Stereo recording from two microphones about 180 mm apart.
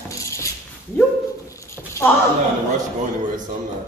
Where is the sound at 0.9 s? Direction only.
10° left (ahead or behind).